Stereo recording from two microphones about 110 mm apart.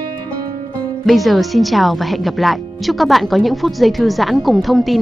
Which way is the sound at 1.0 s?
Centre (ahead or behind).